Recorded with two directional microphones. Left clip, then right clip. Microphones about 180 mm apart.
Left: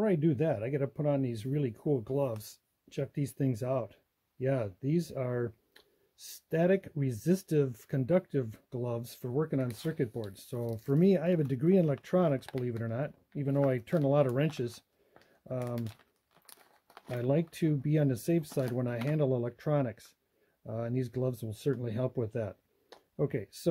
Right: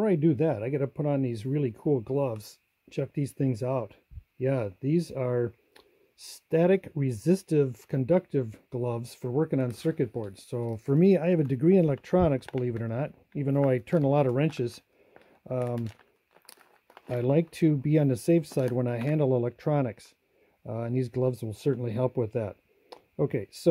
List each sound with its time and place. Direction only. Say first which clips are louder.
0.0 s speech: right 4 dB; 25° right (ahead or behind)
17.2 s speech: right 6 dB; 30° right (ahead or behind)